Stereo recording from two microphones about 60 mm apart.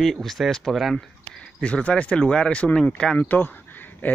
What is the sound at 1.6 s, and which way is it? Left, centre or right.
Speech, centre.